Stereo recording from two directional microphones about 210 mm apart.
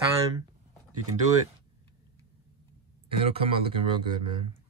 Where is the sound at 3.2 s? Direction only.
25° right (ahead or behind).